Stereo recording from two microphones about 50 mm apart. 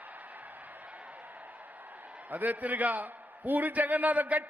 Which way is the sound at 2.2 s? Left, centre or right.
Right.